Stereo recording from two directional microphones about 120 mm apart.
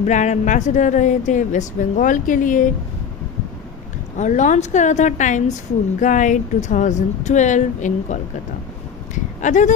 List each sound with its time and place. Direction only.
0.0 s a woman's voice: 85° left
4.2 s a woman's voice: 85° left